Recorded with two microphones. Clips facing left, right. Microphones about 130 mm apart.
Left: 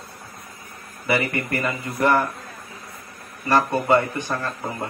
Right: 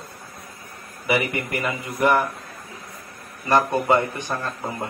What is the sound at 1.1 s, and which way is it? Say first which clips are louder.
A man's voice: even; 15° right (ahead or behind).